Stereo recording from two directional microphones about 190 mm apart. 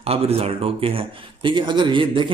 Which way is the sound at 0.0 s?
30° right (ahead or behind).